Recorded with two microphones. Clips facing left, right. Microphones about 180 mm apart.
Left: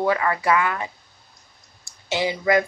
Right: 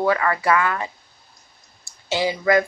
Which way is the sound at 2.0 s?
20° left (ahead or behind).